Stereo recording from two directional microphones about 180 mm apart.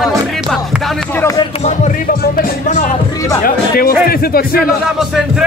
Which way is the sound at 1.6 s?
45° left (ahead or behind).